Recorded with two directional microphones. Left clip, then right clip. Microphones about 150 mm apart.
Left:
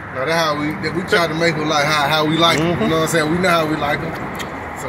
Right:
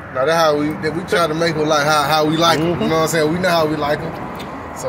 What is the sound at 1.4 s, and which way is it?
Speech, 75° right (ahead or behind).